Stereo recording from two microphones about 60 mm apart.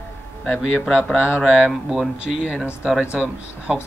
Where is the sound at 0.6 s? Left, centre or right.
Centre.